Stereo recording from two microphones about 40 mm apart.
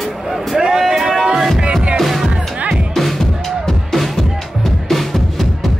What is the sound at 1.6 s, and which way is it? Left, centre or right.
Music, right.